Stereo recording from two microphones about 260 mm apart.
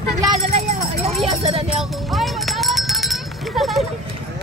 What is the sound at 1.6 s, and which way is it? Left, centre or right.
Speech, centre.